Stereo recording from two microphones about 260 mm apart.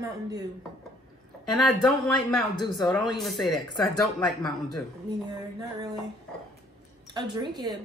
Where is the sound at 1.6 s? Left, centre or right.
Centre.